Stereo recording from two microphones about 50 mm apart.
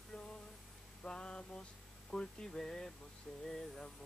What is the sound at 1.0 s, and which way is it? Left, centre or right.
Mantra, centre.